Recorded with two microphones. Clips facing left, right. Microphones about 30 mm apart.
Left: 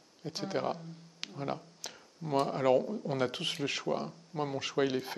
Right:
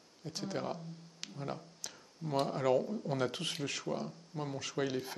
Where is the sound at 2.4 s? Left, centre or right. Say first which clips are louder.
Left 3 dB; centre.